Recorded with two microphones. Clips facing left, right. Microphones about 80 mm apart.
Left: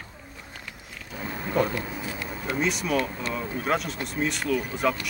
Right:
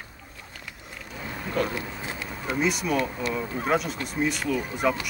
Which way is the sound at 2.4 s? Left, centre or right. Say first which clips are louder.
Right 2 dB; centre.